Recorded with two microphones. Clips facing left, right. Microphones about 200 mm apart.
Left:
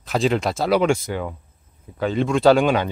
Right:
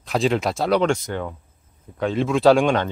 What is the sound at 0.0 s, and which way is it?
Speech, centre (ahead or behind).